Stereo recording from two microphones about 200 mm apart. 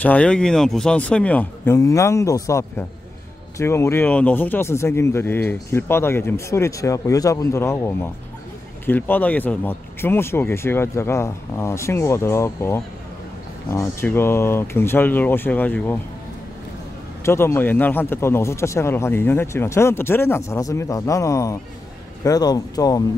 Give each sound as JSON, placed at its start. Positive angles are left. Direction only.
{"t": 0.0, "sound": "speech", "side_deg": 5}
{"t": 17.2, "sound": "speech", "side_deg": 15}